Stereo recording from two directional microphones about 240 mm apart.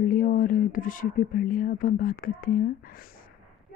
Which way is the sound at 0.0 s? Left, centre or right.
Left.